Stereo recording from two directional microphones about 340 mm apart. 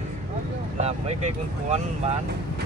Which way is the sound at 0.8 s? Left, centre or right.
Centre.